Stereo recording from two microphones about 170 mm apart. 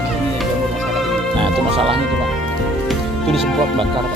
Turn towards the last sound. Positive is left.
turn(degrees=0)  # may be behind; listen again after turning